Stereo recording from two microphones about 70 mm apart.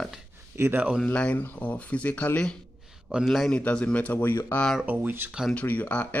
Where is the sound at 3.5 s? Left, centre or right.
Centre.